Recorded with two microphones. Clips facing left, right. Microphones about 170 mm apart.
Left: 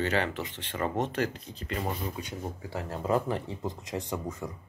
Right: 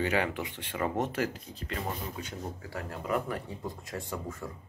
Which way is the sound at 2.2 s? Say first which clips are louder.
Left 2 dB; 20° left (ahead or behind).